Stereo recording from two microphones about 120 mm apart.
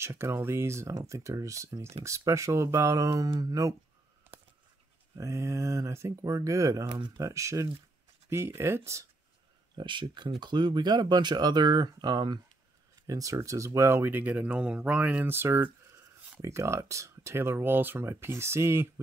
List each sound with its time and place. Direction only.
0.0 s speech: 20° right (ahead or behind)
5.1 s speech: 25° right (ahead or behind)
6.9 s speech: 40° right (ahead or behind)
7.2 s speech: 25° right (ahead or behind)
9.8 s speech: 40° right (ahead or behind); by 18.9 s 20° right (ahead or behind)